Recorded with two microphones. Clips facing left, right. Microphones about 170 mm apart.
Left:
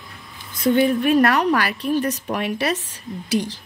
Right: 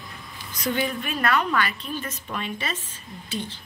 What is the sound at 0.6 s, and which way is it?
Speech, 35° left (ahead or behind).